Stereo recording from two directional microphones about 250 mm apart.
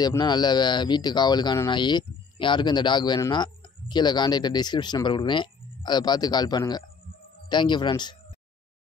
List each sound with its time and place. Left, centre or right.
0.0 s speech: centre